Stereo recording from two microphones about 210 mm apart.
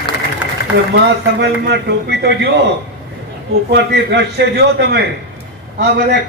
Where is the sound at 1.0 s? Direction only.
55° right (ahead or behind).